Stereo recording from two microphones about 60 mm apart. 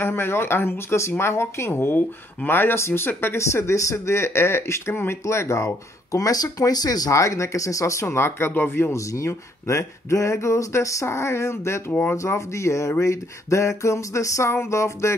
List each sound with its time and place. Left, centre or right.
0.0 s speech: left
3.3 s speech: left
8.9 s speech: left
11.1 s speech: left
11.9 s speech: left
12.2 s speech: left